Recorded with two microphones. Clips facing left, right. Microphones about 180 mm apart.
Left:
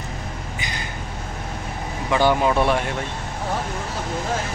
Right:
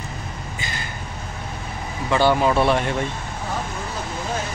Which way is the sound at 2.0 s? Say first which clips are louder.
Right 1 dB; 15° left (ahead or behind).